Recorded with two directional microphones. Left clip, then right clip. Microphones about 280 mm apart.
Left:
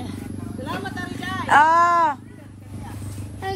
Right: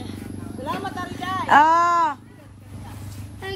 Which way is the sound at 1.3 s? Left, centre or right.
Centre.